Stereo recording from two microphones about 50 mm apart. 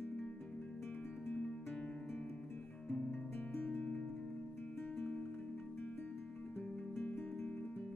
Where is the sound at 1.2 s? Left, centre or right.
Centre.